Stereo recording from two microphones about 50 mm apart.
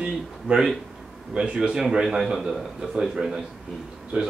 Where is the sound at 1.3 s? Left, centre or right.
Right.